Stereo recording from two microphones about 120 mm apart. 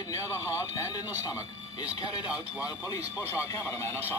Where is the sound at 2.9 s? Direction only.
25° left (ahead or behind).